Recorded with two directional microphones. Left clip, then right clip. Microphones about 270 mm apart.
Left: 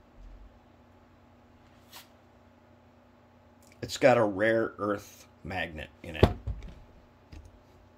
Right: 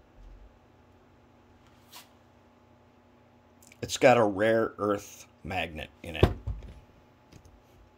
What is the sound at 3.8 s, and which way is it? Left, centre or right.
Speech, centre.